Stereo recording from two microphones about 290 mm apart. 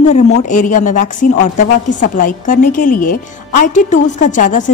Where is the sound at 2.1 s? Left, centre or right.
Left.